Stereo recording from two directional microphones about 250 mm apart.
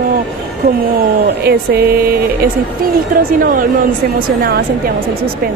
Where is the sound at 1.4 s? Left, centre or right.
Right.